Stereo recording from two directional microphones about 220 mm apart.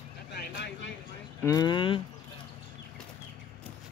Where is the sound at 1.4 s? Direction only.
15° left (ahead or behind).